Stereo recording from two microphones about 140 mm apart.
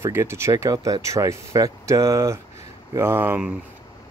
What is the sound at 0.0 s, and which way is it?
Speech, 20° right (ahead or behind).